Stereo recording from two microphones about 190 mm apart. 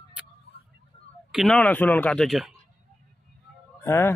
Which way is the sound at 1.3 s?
Centre (ahead or behind).